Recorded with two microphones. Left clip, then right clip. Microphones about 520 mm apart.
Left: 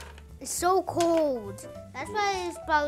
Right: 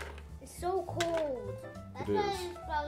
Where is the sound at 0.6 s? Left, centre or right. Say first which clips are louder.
Left 10 dB; left.